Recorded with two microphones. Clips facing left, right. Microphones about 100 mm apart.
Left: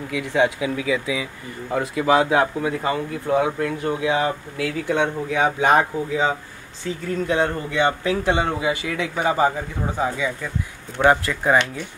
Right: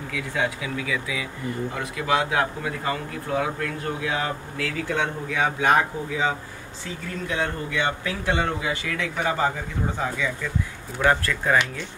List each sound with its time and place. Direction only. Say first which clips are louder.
0.1 s speech: left 7 dB; 20° left (ahead or behind)